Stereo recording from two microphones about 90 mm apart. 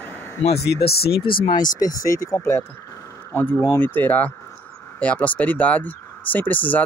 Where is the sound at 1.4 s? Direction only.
50° left (ahead or behind).